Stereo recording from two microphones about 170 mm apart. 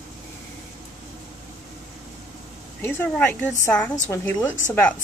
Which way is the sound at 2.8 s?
15° left (ahead or behind).